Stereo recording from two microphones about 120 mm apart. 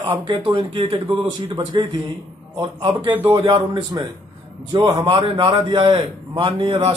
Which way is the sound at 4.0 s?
35° right (ahead or behind).